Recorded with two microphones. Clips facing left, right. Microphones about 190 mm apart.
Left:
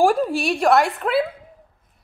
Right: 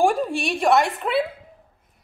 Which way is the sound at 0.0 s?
Centre (ahead or behind).